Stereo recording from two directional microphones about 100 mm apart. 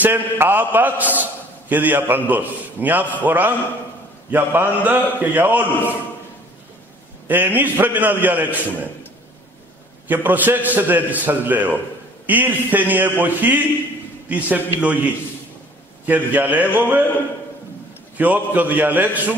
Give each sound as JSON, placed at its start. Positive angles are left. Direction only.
{"t": 0.0, "sound": "a man's voice", "side_deg": -20}
{"t": 7.2, "sound": "a man's voice", "side_deg": -20}
{"t": 10.0, "sound": "a man's voice", "side_deg": -20}
{"t": 16.1, "sound": "a man's voice", "side_deg": -15}
{"t": 18.1, "sound": "a man's voice", "side_deg": -15}